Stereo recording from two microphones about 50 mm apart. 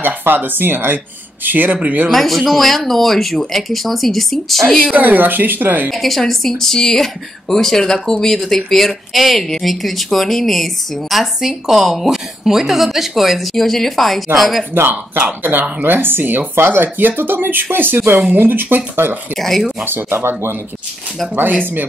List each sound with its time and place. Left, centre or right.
0.0 s speech: right
2.0 s speech: centre
4.9 s speech: right
5.9 s speech: centre
14.7 s speech: right
19.3 s speech: centre
19.8 s speech: right
21.4 s speech: right